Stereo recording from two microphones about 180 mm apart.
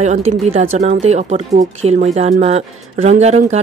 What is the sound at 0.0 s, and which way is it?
Speech, 35° right (ahead or behind).